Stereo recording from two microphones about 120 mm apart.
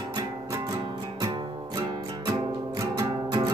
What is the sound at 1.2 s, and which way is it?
Music, 40° right (ahead or behind).